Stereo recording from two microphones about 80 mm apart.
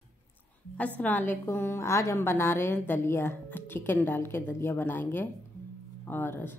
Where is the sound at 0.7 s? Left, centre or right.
Left.